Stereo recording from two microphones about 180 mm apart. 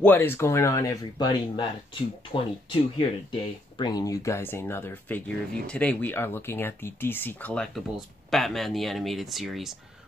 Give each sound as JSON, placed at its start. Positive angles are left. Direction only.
{"t": 0.0, "sound": "speech", "side_deg": 10}